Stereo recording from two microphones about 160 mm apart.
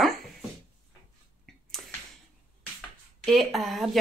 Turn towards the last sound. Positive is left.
turn(degrees=0)  # may be behind; listen again after turning